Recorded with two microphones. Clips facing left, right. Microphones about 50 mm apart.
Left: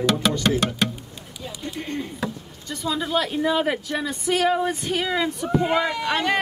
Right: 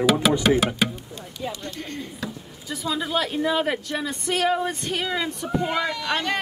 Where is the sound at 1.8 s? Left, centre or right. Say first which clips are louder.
Left 8 dB; centre.